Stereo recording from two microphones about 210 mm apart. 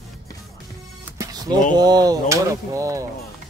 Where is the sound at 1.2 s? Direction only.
15° right (ahead or behind).